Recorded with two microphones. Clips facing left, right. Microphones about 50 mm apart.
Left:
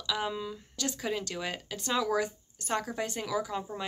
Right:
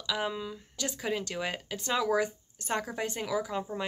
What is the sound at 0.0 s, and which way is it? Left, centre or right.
Speech, centre.